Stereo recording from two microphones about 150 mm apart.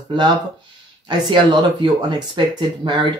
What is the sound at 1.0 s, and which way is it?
Speech, 30° right (ahead or behind).